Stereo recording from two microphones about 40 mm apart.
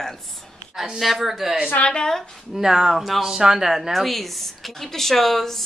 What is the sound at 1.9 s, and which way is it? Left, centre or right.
Speech, centre.